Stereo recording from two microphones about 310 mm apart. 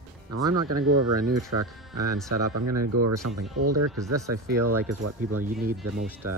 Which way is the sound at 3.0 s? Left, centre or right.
Right.